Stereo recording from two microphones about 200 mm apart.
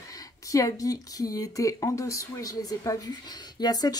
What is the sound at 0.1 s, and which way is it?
Speech, 15° left (ahead or behind).